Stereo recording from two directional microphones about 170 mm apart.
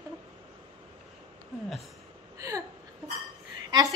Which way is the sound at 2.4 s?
20° right (ahead or behind).